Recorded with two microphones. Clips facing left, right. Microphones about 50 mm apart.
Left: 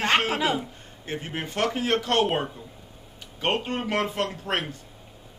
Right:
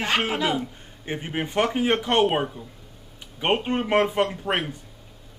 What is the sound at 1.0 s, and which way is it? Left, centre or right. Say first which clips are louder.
Speech: right 3 dB; centre.